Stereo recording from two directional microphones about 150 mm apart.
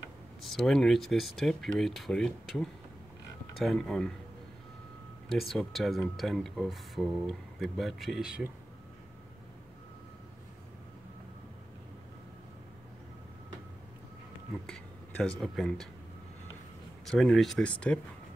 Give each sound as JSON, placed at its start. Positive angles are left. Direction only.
{"t": 0.4, "sound": "speech", "side_deg": 0}
{"t": 5.3, "sound": "speech", "side_deg": 0}
{"t": 15.4, "sound": "speech", "side_deg": 0}
{"t": 17.0, "sound": "speech", "side_deg": 5}